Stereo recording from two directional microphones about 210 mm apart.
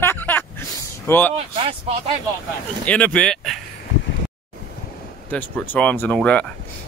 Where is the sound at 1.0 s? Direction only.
10° left (ahead or behind).